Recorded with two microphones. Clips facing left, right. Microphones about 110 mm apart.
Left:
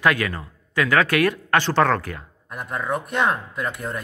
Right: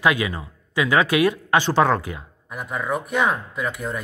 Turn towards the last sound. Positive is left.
turn(degrees=0)  # may be behind; listen again after turning